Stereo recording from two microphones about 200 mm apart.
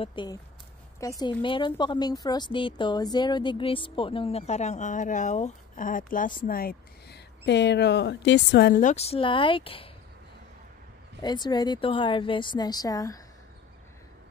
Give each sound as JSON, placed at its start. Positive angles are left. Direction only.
{"t": 0.0, "sound": "a woman's voice", "side_deg": 25}
{"t": 11.1, "sound": "speech", "side_deg": 20}